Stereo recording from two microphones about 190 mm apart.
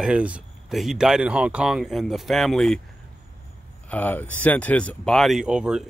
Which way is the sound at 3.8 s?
10° left (ahead or behind).